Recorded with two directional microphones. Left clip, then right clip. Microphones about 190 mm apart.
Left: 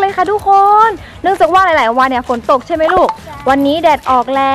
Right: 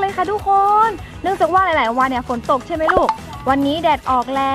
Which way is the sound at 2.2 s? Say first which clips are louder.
Left 6 dB; 40° left (ahead or behind).